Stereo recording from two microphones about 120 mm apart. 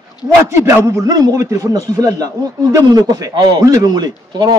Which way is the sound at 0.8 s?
25° right (ahead or behind).